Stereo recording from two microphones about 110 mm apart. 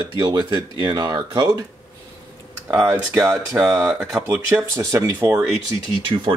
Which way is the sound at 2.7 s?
15° right (ahead or behind).